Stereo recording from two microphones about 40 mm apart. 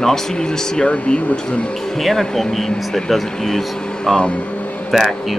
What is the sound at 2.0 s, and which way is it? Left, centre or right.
Speech, centre.